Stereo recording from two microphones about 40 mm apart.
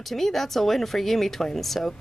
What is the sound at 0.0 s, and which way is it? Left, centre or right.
Speech, centre.